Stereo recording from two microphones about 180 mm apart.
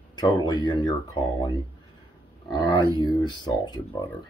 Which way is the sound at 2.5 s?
25° left (ahead or behind).